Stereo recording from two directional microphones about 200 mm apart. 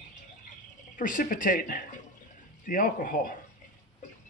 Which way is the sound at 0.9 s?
40° left (ahead or behind).